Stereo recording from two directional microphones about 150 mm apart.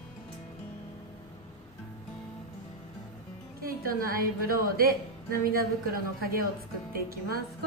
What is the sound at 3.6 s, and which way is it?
A woman's voice, 75° right (ahead or behind).